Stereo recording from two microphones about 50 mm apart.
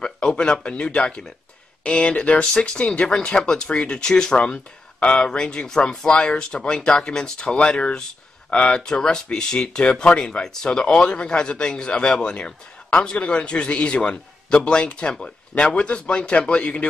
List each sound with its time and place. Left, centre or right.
0.0 s speech: centre